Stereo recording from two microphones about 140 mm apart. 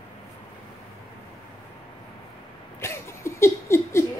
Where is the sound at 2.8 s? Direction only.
20° left (ahead or behind).